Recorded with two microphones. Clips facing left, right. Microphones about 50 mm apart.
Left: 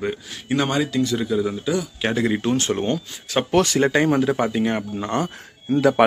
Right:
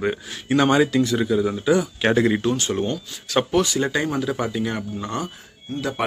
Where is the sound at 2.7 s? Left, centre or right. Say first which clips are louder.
Left 1 dB; left.